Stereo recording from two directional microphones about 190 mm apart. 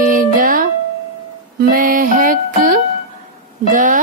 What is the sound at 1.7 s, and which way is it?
Music, 45° right (ahead or behind).